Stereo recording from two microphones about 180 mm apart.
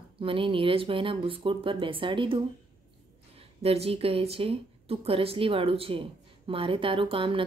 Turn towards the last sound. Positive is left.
turn(degrees=-30)  # may be behind; listen again after turning